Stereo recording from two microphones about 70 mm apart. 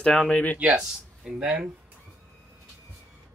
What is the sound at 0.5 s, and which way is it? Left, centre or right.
Speech, centre.